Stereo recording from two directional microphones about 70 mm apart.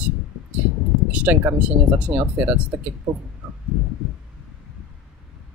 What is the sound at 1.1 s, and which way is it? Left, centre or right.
Speech, right.